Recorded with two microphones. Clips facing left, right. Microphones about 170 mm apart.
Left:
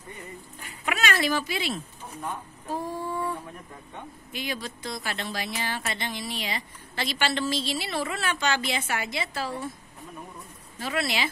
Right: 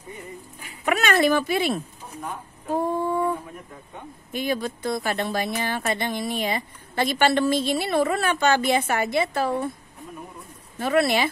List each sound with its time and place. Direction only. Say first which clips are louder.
0.8 s speech: right 6 dB; 55° right (ahead or behind)
2.7 s a sound: right 7 dB; 55° right (ahead or behind)
4.3 s speech: right 8 dB; 50° right (ahead or behind)
10.8 s speech: right 8 dB; 55° right (ahead or behind)